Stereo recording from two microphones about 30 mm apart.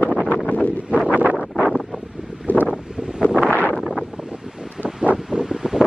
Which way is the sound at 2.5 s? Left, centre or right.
Left.